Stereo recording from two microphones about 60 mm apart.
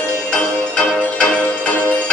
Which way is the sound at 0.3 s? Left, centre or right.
Centre.